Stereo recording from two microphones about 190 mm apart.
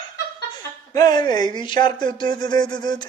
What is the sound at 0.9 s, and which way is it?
Speech, 20° left (ahead or behind).